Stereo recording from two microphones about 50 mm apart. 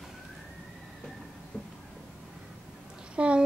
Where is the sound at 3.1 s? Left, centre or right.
Right.